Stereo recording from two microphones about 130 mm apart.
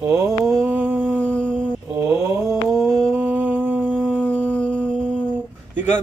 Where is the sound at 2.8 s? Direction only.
5° left (ahead or behind).